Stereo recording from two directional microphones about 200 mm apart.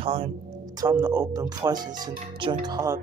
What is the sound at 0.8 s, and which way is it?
Speech, 15° right (ahead or behind).